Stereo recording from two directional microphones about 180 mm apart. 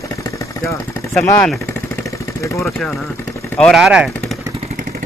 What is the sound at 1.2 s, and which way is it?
Speech, 5° left (ahead or behind).